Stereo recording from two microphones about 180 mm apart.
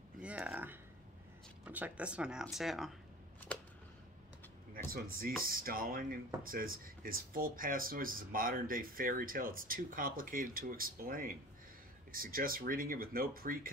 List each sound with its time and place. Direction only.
0.2 s a sound: 5° right (ahead or behind)
1.6 s speech: 10° right (ahead or behind)
5.5 s speech: 55° right (ahead or behind)